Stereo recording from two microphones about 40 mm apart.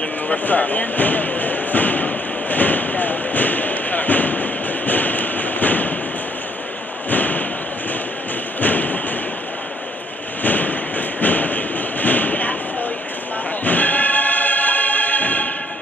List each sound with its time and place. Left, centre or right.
0.5 s thump: left
7.1 s thump: left
8.5 s thump: left
10.4 s a sound: left
13.7 s music: left